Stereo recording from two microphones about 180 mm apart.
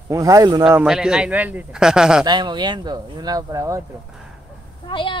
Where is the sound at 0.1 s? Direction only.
20° right (ahead or behind).